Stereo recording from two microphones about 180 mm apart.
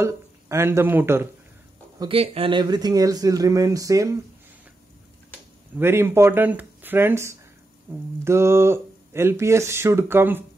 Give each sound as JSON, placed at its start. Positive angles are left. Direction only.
{"t": 0.0, "sound": "speech", "side_deg": -15}
{"t": 2.0, "sound": "speech", "side_deg": -30}
{"t": 5.8, "sound": "speech", "side_deg": -15}